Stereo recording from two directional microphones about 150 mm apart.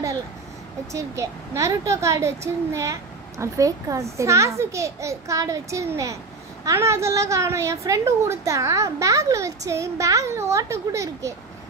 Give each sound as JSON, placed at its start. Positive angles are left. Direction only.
{"t": 0.9, "sound": "speech", "side_deg": -20}